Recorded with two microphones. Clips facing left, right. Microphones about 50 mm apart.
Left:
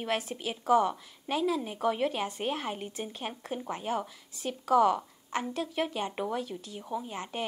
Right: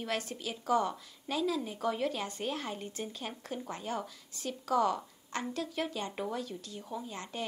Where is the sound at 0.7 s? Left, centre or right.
Left.